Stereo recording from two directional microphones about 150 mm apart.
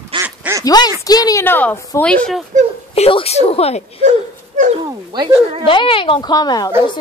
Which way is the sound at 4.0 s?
55° right (ahead or behind).